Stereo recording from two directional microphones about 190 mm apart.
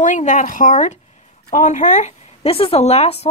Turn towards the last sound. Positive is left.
turn(degrees=35)  # may be behind; listen again after turning